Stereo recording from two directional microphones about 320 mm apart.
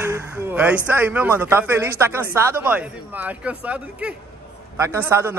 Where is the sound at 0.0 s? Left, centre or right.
Centre.